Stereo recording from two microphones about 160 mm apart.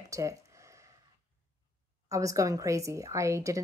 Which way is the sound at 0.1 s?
20° right (ahead or behind).